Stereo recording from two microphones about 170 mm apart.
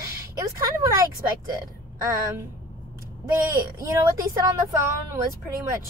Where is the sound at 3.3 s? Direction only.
20° right (ahead or behind).